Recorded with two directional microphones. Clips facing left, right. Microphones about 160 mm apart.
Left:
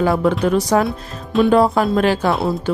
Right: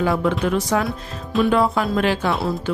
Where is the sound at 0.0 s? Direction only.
40° left (ahead or behind).